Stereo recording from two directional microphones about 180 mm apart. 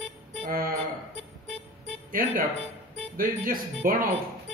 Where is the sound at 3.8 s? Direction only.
50° right (ahead or behind).